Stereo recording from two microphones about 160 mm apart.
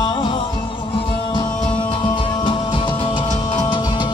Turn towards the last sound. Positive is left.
turn(degrees=30)  # may be behind; listen again after turning